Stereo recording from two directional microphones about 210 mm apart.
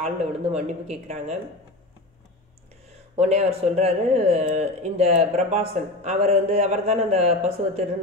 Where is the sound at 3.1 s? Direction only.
30° right (ahead or behind).